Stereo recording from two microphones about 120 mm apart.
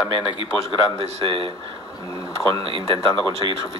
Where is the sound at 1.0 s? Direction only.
55° right (ahead or behind).